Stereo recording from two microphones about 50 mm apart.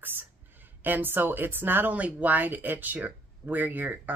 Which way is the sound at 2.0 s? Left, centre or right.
Right.